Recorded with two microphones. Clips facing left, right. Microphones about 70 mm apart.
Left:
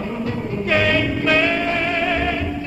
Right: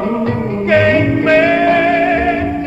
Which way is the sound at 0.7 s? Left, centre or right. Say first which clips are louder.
Right 8 dB; right.